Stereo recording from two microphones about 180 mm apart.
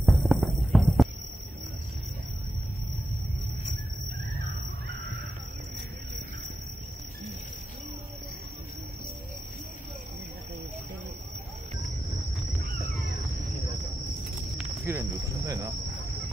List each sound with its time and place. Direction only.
0.0 s throbbing: centre (ahead or behind)
14.6 s cricket: 15° right (ahead or behind)